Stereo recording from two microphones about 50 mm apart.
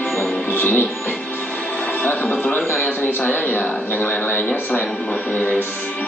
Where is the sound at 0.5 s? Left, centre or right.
Left.